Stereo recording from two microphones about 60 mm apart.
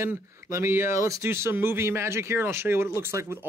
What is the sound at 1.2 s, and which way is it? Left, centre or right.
Speech, right.